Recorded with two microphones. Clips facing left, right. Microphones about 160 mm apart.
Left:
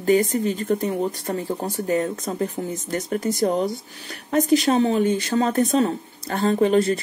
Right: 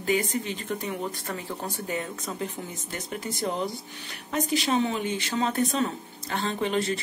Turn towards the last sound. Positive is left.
turn(degrees=40)  # may be behind; listen again after turning